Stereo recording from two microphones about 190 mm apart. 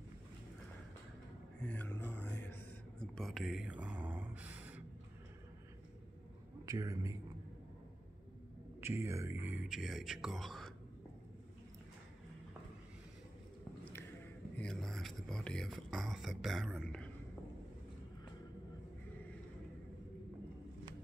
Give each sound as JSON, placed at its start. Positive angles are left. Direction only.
{"t": 1.6, "sound": "a sound", "side_deg": 10}
{"t": 6.6, "sound": "a man's voice", "side_deg": -15}
{"t": 8.8, "sound": "speech", "side_deg": -15}
{"t": 14.6, "sound": "speech", "side_deg": 5}